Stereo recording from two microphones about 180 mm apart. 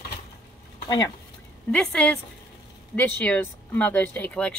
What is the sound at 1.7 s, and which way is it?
A woman's voice, 5° left (ahead or behind).